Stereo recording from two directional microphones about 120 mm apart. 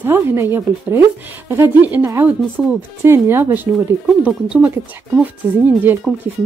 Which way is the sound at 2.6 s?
5° right (ahead or behind).